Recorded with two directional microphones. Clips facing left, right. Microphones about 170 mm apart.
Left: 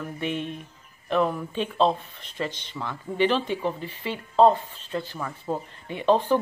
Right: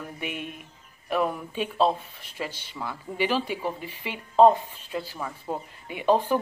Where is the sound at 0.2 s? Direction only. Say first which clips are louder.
Left 6 dB; 10° right (ahead or behind).